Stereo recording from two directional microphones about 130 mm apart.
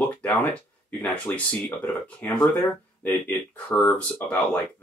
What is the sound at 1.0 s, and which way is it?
Speech, 10° left (ahead or behind).